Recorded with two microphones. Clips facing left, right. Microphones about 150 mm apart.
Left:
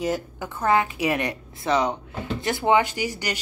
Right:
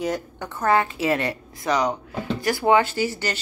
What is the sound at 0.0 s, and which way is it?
Speech, centre (ahead or behind).